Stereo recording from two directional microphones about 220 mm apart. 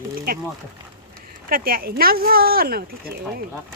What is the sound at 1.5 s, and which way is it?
Speech, 40° right (ahead or behind).